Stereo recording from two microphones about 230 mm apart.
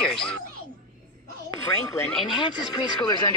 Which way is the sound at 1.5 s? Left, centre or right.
Centre.